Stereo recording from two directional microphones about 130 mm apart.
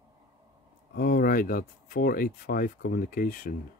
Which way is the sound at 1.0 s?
90° left.